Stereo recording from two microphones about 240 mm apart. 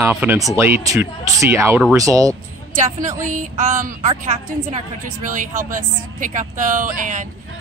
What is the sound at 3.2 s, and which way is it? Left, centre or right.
Speech, right.